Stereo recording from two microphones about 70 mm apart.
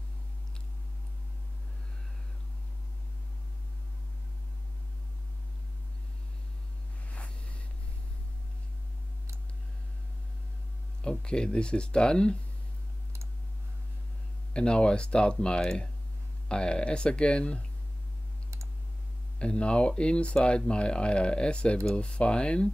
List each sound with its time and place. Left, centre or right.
7.1 s a sound: centre
11.0 s speech: centre
14.5 s speech: centre
19.3 s speech: centre